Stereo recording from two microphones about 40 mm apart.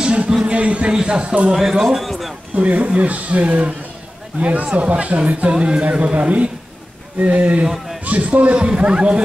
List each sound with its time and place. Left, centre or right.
0.4 s a sound: right
0.9 s speech: right
1.5 s speech: centre
2.5 s speech: right